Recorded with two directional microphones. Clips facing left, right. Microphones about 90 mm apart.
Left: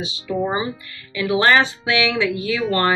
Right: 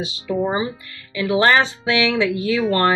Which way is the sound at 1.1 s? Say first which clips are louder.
Even; 35° right (ahead or behind).